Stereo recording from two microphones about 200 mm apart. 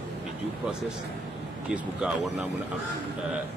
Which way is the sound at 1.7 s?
5° right (ahead or behind).